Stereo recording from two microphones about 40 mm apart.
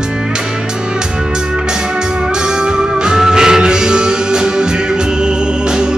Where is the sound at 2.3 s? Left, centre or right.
Right.